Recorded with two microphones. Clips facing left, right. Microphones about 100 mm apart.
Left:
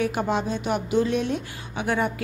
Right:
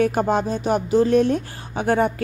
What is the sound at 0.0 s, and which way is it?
A woman's voice, 40° right (ahead or behind).